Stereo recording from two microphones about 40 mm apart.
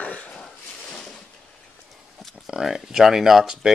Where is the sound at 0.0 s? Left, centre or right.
Left.